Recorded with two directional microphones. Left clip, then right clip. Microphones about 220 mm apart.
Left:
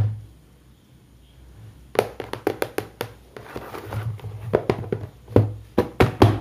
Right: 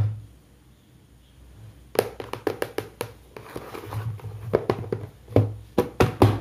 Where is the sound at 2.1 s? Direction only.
15° left (ahead or behind).